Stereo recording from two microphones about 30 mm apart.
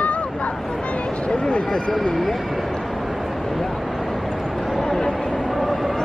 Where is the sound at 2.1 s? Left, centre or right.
Centre.